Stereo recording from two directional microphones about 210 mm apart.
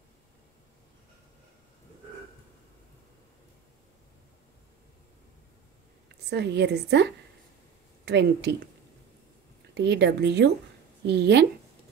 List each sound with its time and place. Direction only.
6.3 s a woman's voice: 55° right (ahead or behind)
9.8 s a woman's voice: 55° right (ahead or behind)